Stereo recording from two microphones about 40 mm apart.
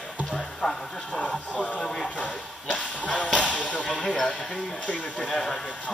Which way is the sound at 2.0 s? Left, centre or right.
Left.